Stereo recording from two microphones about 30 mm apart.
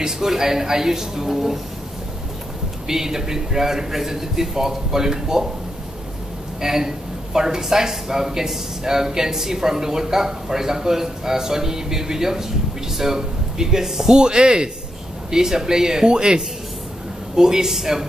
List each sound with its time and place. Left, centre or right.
0.0 s speech: centre
2.9 s speech: centre
6.6 s speech: centre
14.0 s speech: right